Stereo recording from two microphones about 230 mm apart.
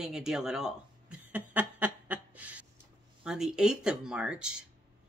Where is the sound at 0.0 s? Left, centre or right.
Centre.